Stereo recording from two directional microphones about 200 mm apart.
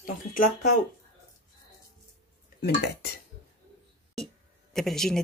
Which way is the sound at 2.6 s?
55° left (ahead or behind).